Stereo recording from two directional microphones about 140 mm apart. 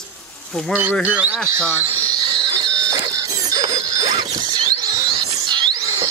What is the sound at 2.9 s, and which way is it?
Music, 30° right (ahead or behind).